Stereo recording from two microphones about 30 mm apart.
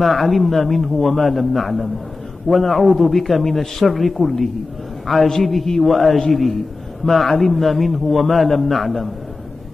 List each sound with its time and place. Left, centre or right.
0.0 s a man's voice: centre